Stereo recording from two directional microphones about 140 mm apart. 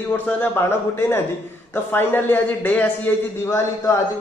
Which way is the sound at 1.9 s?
15° left (ahead or behind).